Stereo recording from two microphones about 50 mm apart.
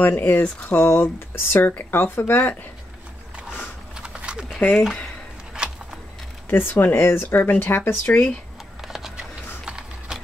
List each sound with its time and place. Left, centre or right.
0.0 s speech: left
0.7 s speech: left
3.9 s a sound: centre
4.6 s speech: left
5.5 s a sound: centre
6.5 s speech: left
7.2 s speech: left
8.0 s speech: left
8.8 s a sound: centre
9.7 s typing: centre